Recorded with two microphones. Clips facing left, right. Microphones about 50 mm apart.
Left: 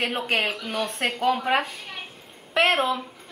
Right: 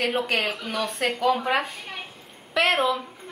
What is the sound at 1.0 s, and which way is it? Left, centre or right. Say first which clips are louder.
Speech: right 1 dB; left.